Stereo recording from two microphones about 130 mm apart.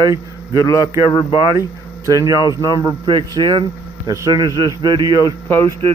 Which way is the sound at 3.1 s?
35° right (ahead or behind).